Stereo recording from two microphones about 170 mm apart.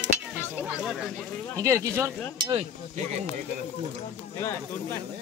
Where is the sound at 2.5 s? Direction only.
35° right (ahead or behind).